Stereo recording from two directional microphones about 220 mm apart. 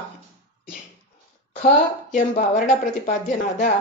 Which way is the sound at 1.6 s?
35° left (ahead or behind).